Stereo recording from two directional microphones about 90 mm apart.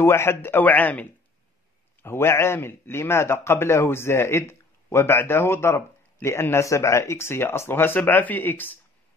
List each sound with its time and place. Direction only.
0.0 s speech: 30° left (ahead or behind)
2.0 s speech: 30° left (ahead or behind)